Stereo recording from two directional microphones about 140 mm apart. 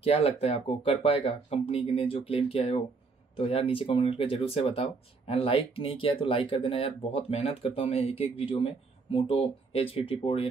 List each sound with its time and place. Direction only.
0.0 s speech: 45° left (ahead or behind)